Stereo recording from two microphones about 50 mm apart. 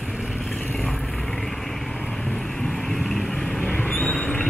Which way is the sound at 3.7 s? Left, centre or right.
Left.